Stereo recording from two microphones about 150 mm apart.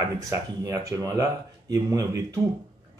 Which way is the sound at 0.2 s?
20° right (ahead or behind).